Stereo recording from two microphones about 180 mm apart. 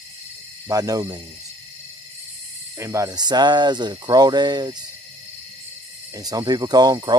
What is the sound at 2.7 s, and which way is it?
Speech, 15° right (ahead or behind).